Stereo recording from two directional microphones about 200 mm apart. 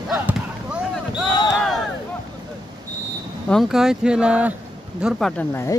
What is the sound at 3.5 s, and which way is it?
Speech, centre (ahead or behind).